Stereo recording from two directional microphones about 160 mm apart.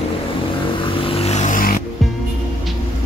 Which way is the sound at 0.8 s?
35° left (ahead or behind).